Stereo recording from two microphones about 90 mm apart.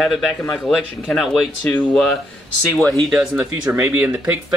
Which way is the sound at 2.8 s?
Centre (ahead or behind).